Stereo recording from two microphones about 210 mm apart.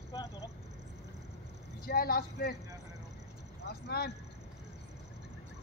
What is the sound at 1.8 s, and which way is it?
Speech, 45° left (ahead or behind).